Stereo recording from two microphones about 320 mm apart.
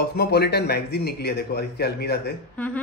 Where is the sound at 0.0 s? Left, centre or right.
Left.